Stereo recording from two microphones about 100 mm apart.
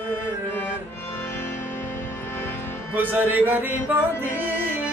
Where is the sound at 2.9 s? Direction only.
20° right (ahead or behind).